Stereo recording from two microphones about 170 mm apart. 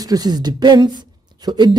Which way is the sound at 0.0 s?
20° right (ahead or behind).